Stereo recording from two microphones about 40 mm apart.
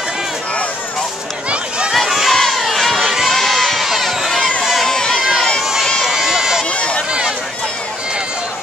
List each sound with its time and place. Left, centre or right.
2.0 s crowd: centre
4.8 s run: centre
6.0 s run: centre
6.7 s a sound: left
7.1 s run: right